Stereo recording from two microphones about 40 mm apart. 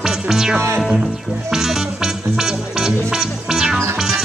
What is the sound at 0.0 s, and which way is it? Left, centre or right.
Music, centre.